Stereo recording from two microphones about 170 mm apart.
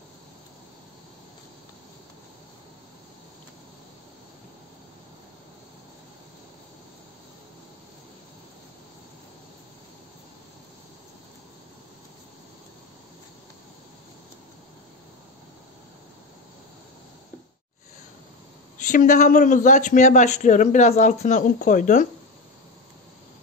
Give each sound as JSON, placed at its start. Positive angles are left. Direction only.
{"t": 18.8, "sound": "a man's voice", "side_deg": 50}